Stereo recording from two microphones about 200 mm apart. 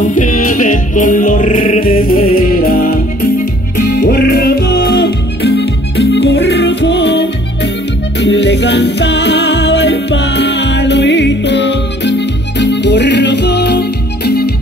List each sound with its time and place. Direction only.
0.1 s music: 40° left (ahead or behind)